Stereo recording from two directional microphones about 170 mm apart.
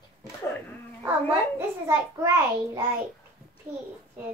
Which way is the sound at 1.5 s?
20° right (ahead or behind).